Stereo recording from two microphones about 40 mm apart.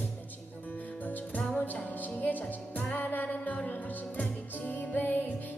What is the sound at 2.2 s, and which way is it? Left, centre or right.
Music, left.